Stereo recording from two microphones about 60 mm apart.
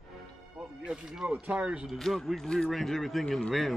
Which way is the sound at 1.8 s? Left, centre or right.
Centre.